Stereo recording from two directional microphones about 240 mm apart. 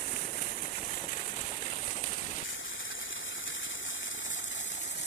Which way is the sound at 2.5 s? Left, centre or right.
Left.